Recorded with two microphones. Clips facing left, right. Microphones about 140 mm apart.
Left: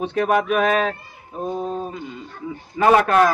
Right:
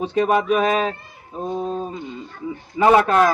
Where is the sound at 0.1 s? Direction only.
25° right (ahead or behind).